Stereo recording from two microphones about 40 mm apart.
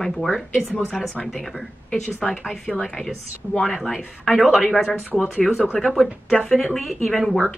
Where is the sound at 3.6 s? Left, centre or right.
Centre.